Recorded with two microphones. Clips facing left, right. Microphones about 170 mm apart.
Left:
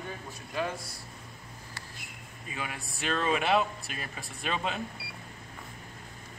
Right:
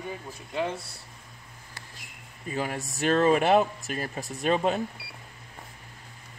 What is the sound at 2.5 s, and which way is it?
Speech, 40° right (ahead or behind).